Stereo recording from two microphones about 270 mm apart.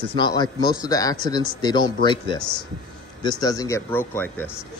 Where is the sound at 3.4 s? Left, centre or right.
Centre.